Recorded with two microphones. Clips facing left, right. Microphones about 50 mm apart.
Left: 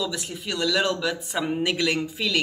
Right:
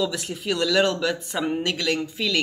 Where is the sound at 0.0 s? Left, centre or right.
Centre.